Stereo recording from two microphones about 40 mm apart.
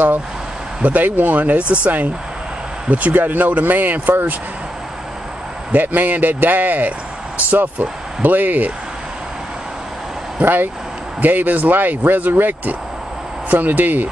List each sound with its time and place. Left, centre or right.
0.8 s speech: right
2.9 s speech: right
5.7 s speech: right
10.4 s speech: right
11.1 s speech: right